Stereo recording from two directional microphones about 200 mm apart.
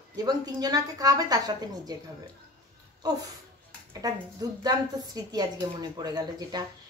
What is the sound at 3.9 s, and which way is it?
A woman's voice, 20° right (ahead or behind).